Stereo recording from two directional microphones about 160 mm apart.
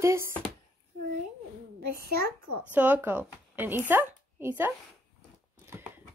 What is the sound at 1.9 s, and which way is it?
Speech, 80° right.